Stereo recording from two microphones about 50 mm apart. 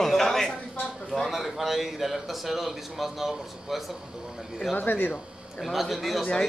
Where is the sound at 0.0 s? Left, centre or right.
Centre.